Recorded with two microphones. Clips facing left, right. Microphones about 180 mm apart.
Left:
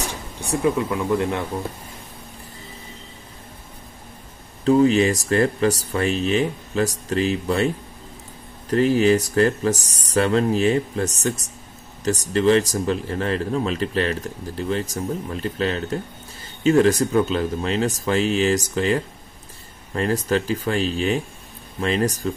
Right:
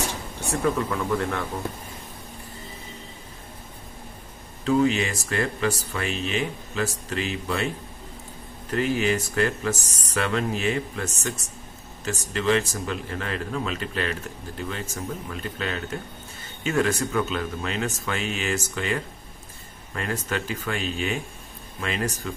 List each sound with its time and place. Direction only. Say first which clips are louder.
0.4 s speech: left 4 dB; 15° left (ahead or behind)
4.6 s speech: left 6 dB; 35° left (ahead or behind)
15.2 s speech: left 7 dB; 35° left (ahead or behind)